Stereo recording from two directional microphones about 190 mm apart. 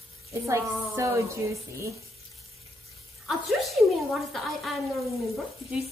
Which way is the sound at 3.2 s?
Centre (ahead or behind).